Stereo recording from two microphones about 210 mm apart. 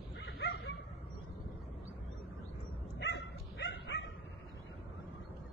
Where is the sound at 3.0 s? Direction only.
55° left (ahead or behind).